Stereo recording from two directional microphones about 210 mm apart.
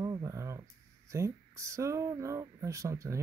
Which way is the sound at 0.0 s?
15° right (ahead or behind).